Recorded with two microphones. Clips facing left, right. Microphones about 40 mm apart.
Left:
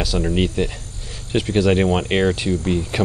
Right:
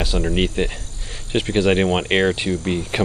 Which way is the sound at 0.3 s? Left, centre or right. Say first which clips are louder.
Even; right.